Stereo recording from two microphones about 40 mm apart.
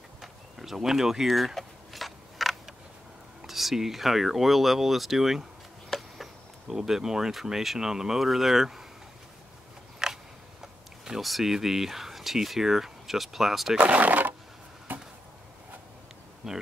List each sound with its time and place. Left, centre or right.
0.2 s a sound: centre
3.4 s speech: centre
5.9 s a sound: centre
6.7 s speech: centre
10.0 s biting: centre
11.1 s speech: centre
13.8 s a sound: right
14.9 s chop: right
16.4 s speech: centre